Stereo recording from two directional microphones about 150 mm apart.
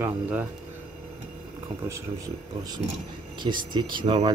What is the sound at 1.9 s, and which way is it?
Speech, 25° right (ahead or behind).